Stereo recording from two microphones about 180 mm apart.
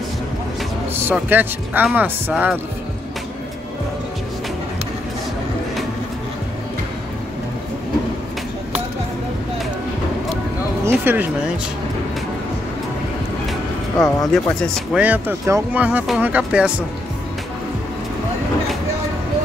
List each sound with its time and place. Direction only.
1.0 s speech: 10° right (ahead or behind)
11.1 s speech: 10° right (ahead or behind)
13.9 s speech: 20° left (ahead or behind)
14.3 s speech: centre (ahead or behind)
15.0 s speech: 10° right (ahead or behind)